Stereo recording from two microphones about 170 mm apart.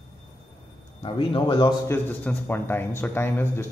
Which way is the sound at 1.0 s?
30° left (ahead or behind).